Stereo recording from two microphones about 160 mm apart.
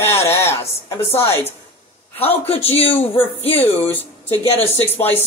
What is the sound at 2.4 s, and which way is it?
Speech, 40° left (ahead or behind).